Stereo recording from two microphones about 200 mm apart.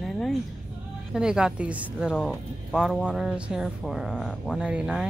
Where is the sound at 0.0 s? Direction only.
Centre (ahead or behind).